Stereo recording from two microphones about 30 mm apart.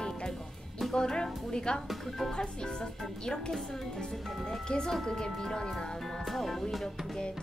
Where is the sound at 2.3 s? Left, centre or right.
Left.